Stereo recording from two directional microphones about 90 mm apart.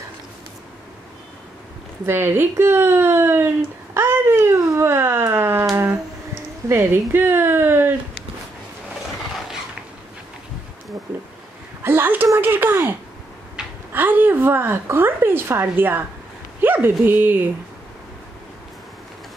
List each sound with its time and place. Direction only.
2.0 s speech: 25° right (ahead or behind)
6.7 s speech: 25° right (ahead or behind)
11.8 s a sound: 25° right (ahead or behind)
12.4 s speech: 20° right (ahead or behind)
13.6 s a sound: 5° right (ahead or behind)
13.9 s speech: 20° right (ahead or behind)